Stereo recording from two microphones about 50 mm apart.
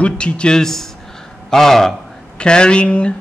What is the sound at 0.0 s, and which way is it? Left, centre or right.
Speech, left.